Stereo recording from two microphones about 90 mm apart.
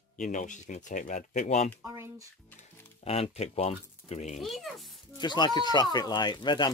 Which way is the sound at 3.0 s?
90° left.